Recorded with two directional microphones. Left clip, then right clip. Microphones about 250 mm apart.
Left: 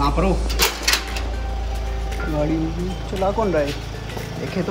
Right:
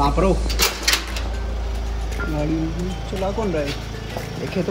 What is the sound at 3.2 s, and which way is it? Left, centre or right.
Speech, centre.